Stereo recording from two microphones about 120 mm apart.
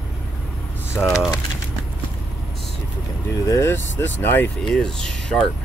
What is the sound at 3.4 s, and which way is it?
Speech, 20° left (ahead or behind).